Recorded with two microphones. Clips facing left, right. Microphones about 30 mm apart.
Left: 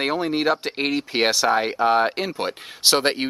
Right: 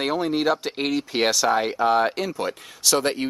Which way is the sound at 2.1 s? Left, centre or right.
Left.